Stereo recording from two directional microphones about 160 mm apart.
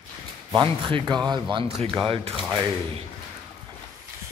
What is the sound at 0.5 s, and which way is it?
Speech, 35° right (ahead or behind).